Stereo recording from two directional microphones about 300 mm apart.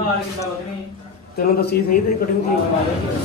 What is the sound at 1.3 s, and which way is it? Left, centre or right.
Speech, left.